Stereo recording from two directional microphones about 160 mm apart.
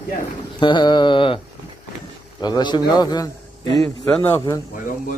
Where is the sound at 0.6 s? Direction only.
30° left (ahead or behind).